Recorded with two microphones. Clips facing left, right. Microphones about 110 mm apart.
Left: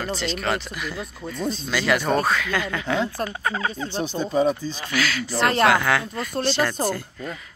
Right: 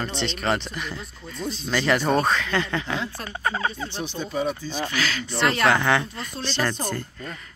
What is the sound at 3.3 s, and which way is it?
Speech, centre (ahead or behind).